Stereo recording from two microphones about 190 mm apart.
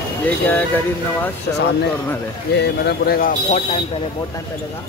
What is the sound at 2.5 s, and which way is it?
Speech, 60° left (ahead or behind).